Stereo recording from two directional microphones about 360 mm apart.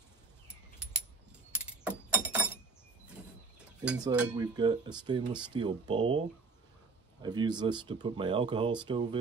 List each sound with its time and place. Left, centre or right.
0.5 s a sound: centre
1.5 s keys jangling: centre
3.1 s cutlery: centre
7.2 s speech: centre